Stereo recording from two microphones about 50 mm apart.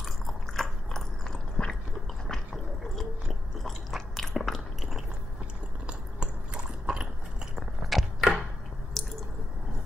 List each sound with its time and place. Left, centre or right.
0.0 s biting: centre
2.2 s a sound: centre
3.6 s chewing: centre
5.9 s biting: centre
7.5 s a sound: centre
9.0 s squish: centre